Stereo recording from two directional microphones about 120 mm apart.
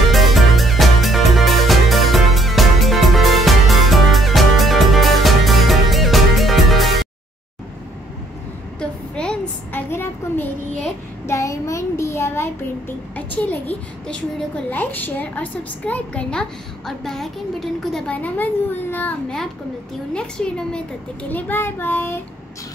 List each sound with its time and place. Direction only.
0.1 s music: centre (ahead or behind)
8.7 s a sound: 5° left (ahead or behind)
11.2 s child singing: 25° left (ahead or behind)
13.1 s a sound: 15° left (ahead or behind)
14.7 s a woman's voice: 15° left (ahead or behind)
18.1 s a woman's voice: 15° left (ahead or behind)
20.2 s a woman's voice: 5° left (ahead or behind)